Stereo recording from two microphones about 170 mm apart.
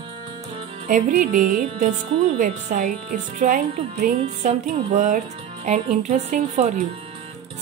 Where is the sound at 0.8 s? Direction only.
50° right (ahead or behind).